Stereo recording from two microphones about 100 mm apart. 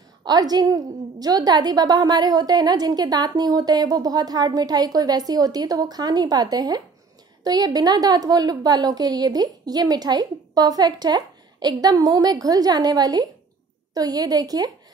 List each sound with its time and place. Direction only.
0.2 s a woman's voice: 40° right (ahead or behind)